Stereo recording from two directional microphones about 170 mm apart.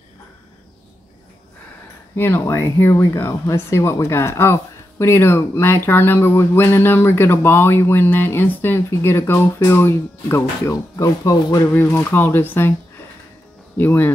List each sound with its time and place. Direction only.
2.1 s speech: 15° left (ahead or behind)
13.7 s speech: 10° left (ahead or behind)